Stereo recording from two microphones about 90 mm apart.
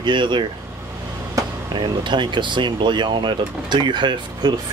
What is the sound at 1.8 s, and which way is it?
Speech, 60° right (ahead or behind).